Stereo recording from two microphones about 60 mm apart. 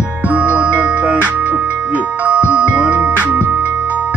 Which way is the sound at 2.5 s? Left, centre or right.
Right.